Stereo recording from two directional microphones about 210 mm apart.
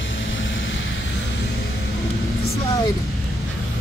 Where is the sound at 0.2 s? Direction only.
65° left (ahead or behind).